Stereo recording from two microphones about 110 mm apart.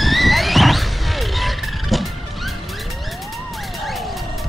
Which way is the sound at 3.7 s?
Centre (ahead or behind).